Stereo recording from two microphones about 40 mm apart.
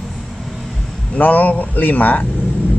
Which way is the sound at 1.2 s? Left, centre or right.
Left.